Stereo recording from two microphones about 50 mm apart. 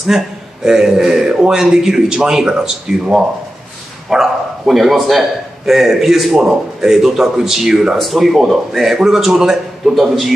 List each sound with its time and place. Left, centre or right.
0.7 s a man's voice: centre